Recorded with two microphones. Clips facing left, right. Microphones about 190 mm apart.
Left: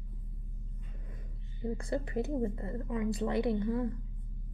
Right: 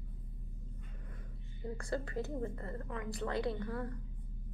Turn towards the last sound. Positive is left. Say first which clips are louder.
# left 7 dB
turn(degrees=20)  # may be behind; listen again after turning